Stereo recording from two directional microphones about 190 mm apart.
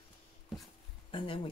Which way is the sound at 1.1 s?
25° left (ahead or behind).